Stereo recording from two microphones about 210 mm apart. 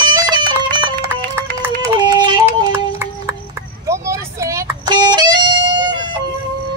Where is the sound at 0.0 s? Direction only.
20° right (ahead or behind).